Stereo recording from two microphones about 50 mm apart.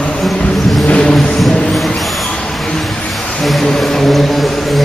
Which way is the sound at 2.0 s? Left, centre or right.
Centre.